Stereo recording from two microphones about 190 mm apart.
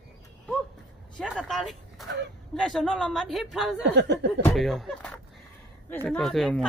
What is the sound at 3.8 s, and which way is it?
Speech, 65° right (ahead or behind).